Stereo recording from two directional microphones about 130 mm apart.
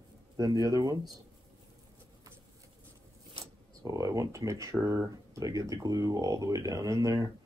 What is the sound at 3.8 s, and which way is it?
Speech, 25° right (ahead or behind).